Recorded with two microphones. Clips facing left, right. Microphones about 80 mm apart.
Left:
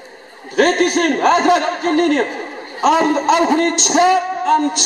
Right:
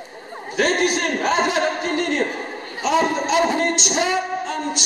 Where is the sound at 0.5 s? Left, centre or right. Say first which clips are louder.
Left 6 dB; left.